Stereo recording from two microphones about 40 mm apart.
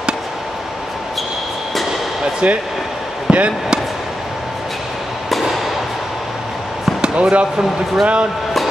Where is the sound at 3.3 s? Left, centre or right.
Centre.